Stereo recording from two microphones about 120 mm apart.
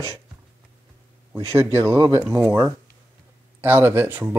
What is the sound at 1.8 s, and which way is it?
Speech, 25° right (ahead or behind).